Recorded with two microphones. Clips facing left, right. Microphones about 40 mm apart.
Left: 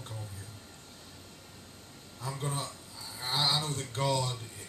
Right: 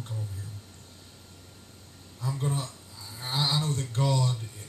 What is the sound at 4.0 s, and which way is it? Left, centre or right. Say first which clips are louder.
Speech: right 2 dB; centre.